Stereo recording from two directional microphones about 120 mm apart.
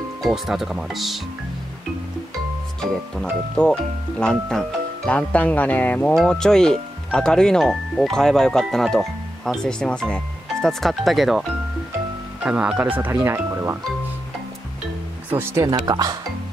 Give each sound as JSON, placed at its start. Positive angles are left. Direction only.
{"t": 0.2, "sound": "speech", "side_deg": -5}
{"t": 2.8, "sound": "speech", "side_deg": 5}
{"t": 12.4, "sound": "speech", "side_deg": -10}
{"t": 15.2, "sound": "speech", "side_deg": -20}
{"t": 15.7, "sound": "speech", "side_deg": -35}